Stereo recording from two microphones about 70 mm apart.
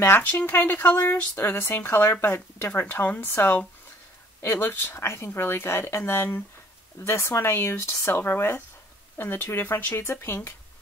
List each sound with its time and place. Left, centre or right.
0.0 s speech: left